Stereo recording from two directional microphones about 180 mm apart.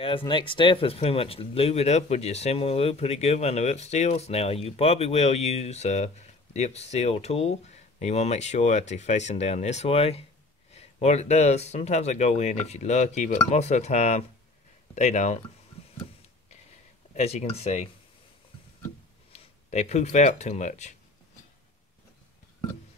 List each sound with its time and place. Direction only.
0.3 s speech: 25° left (ahead or behind)
17.1 s speech: 35° left (ahead or behind)
19.3 s speech: 40° left (ahead or behind)